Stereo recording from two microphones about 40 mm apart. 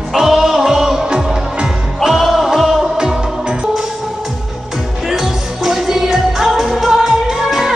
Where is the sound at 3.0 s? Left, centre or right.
Centre.